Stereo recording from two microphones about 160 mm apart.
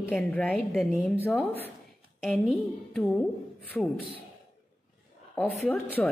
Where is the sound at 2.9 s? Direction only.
10° left (ahead or behind).